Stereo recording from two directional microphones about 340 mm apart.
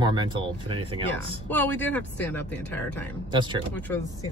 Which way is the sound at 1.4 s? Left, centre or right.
Centre.